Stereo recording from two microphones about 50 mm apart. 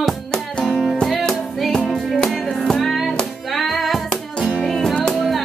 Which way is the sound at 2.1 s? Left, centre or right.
Centre.